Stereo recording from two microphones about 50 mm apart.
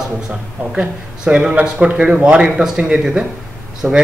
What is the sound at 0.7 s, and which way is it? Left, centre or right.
Speech, centre.